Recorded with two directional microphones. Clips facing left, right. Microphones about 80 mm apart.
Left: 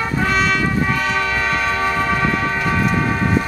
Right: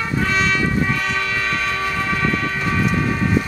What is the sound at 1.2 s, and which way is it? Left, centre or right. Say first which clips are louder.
Train: left 3 dB; centre.